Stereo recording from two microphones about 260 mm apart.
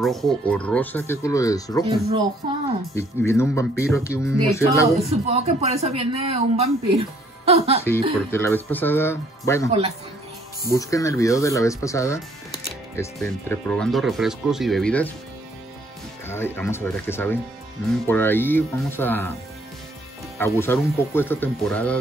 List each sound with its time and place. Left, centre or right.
0.0 s speech: centre
1.9 s speech: centre
2.9 s speech: centre
5.0 s speech: right
8.3 s speech: centre
9.7 s speech: right
10.7 s speech: centre
16.3 s speech: centre
20.3 s speech: centre